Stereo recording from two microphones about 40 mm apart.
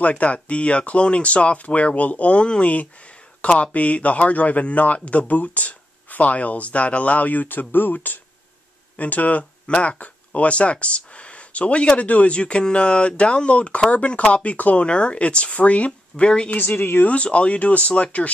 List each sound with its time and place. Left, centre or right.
0.2 s speech: left
2.3 s speech: left
2.6 s speech: left
8.9 s speech: left
16.5 s speech: left
17.0 s speech: left